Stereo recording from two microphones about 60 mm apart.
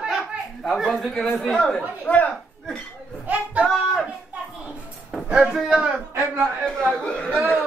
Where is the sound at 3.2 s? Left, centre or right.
Right.